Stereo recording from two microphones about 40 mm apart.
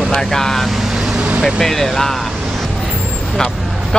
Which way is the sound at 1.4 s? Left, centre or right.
Centre.